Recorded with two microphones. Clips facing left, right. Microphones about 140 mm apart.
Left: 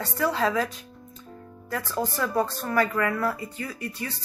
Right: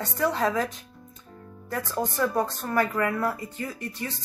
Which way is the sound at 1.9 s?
20° right (ahead or behind).